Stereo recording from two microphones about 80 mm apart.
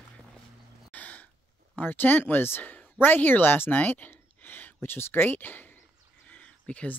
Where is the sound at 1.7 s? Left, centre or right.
Left.